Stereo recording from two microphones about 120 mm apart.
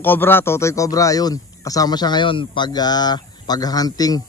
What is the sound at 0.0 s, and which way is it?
A man's voice, 15° left (ahead or behind).